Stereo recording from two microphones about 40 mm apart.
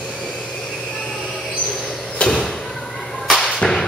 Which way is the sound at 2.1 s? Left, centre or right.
Centre.